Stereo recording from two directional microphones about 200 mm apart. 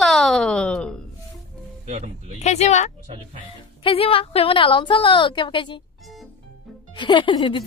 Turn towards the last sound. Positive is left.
turn(degrees=25)  # may be behind; listen again after turning